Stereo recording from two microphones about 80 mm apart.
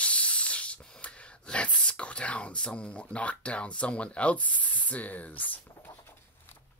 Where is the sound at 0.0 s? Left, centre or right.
Centre.